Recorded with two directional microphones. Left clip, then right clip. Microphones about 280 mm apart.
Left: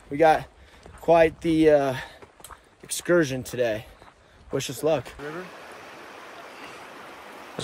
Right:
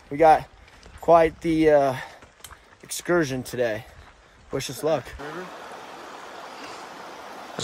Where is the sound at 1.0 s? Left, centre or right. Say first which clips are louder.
Right 1 dB; centre.